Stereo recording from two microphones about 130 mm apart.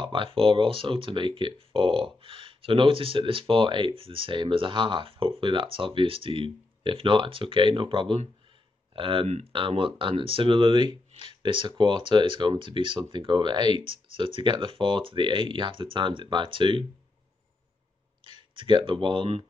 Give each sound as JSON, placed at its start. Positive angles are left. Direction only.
{"t": 0.0, "sound": "speech", "side_deg": -40}
{"t": 18.2, "sound": "speech", "side_deg": -40}